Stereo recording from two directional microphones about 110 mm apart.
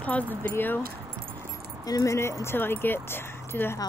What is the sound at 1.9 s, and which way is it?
Speech, 30° left (ahead or behind).